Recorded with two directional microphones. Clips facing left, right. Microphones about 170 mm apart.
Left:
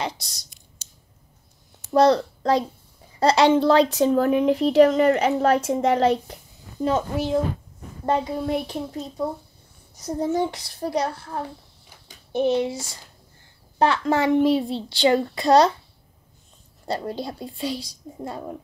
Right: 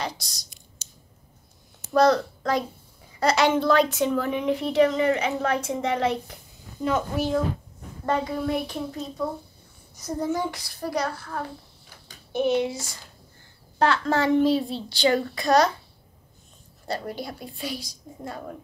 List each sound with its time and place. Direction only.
0.0 s speech: 25° left (ahead or behind)
2.0 s a woman's voice: 30° left (ahead or behind)
13.7 s speech: 20° left (ahead or behind)
16.8 s speech: 30° left (ahead or behind)